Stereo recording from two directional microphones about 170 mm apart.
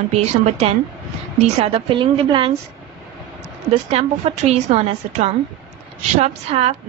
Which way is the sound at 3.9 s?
40° right (ahead or behind).